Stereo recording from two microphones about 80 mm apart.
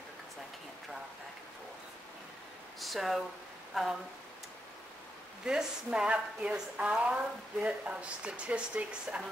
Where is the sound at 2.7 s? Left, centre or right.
Centre.